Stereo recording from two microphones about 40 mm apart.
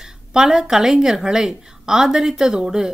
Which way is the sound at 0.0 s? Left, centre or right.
Centre.